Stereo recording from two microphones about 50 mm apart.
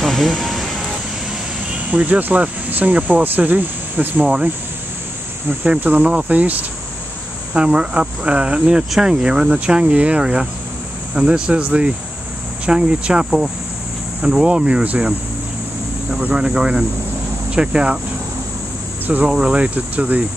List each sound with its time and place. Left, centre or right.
0.0 s music: centre
0.5 s vehicle: centre
1.9 s speech: right
5.7 s speech: right
7.5 s speech: centre
16.3 s speech: centre
19.2 s speech: right